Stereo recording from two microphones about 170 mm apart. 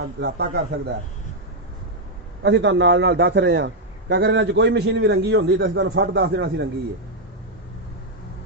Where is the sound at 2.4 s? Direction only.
90° right.